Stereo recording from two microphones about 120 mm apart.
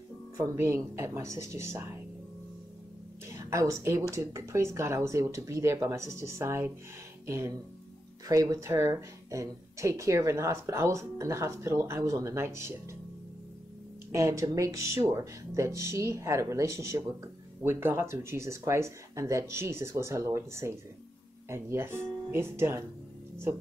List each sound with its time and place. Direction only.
0.6 s a woman's voice: 20° right (ahead or behind)
3.3 s a woman's voice: 25° right (ahead or behind)
14.1 s a woman's voice: 25° right (ahead or behind)